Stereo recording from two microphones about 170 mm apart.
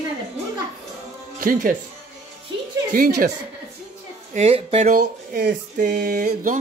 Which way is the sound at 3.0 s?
55° right (ahead or behind).